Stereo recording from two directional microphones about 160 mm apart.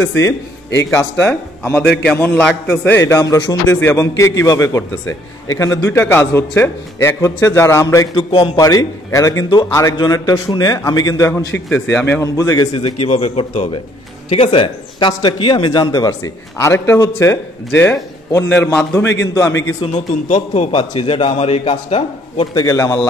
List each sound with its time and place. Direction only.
0.9 s a man's voice: 15° left (ahead or behind); by 8.5 s 35° left (ahead or behind)
8.5 s a man's voice: 20° left (ahead or behind)
13.1 s a man's voice: 45° left (ahead or behind); by 19.7 s 15° left (ahead or behind)
19.8 s a man's voice: 45° left (ahead or behind)
20.7 s a man's voice: 35° left (ahead or behind)
22.6 s a man's voice: 20° left (ahead or behind)